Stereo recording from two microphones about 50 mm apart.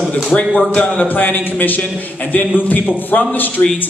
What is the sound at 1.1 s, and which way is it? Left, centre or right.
A man's voice, left.